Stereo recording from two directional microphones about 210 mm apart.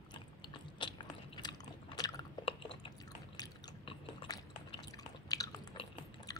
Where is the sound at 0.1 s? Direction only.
20° left (ahead or behind).